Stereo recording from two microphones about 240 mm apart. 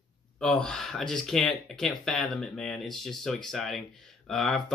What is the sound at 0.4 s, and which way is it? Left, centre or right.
Speech, centre.